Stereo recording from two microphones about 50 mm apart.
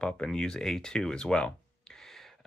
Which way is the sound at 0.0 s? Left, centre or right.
Centre.